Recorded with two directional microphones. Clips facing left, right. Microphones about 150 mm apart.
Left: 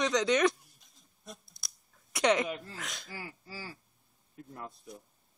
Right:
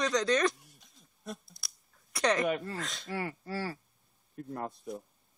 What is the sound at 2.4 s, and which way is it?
Speech, 65° right (ahead or behind).